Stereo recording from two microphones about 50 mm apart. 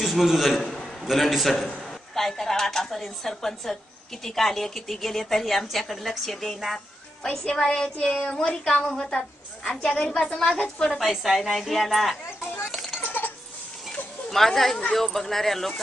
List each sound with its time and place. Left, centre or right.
0.0 s a man's voice: centre
0.5 s a man's voice: centre
7.2 s a woman's voice: centre
10.0 s a woman's voice: centre
11.0 s a woman's voice: centre
12.3 s speech: left
12.7 s a sound: centre
13.0 s a sound: left
14.3 s a woman's voice: centre